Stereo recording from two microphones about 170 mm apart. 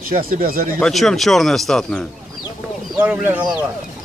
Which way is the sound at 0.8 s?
Centre (ahead or behind).